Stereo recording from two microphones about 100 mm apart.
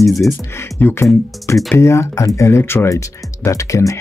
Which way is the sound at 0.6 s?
20° left (ahead or behind).